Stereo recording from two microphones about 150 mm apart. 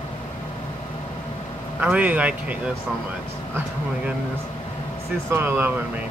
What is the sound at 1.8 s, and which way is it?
Speech, 10° right (ahead or behind).